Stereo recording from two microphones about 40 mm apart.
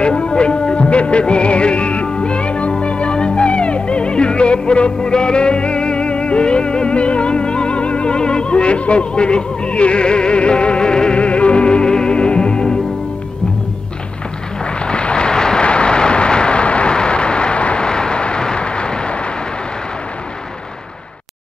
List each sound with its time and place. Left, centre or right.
0.0 s music: left
14.8 s vehicle: left